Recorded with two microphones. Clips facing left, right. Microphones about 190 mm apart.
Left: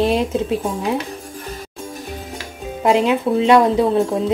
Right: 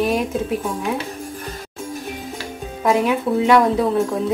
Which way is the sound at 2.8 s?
25° left (ahead or behind).